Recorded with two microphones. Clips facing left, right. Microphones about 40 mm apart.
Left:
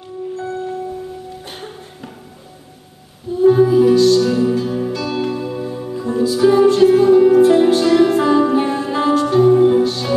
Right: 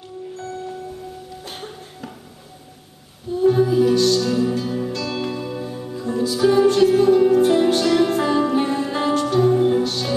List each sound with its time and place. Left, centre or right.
0.4 s music: centre
3.3 s music: centre